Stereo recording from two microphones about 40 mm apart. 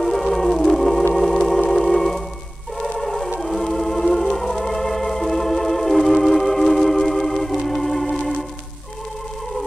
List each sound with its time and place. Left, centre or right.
0.0 s music: centre
3.3 s organ: centre